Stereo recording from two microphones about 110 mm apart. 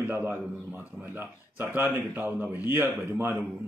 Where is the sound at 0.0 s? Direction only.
20° right (ahead or behind).